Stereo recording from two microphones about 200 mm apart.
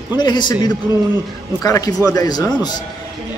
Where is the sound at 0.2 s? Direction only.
20° left (ahead or behind).